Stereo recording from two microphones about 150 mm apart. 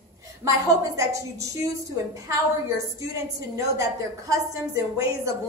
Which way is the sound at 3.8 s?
20° right (ahead or behind).